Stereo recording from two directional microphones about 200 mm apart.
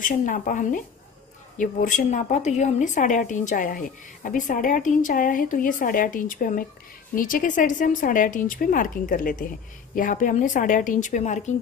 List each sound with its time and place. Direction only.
0.0 s a woman's voice: 40° left (ahead or behind)